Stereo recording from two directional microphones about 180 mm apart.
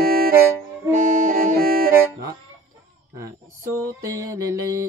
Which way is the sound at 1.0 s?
45° right (ahead or behind).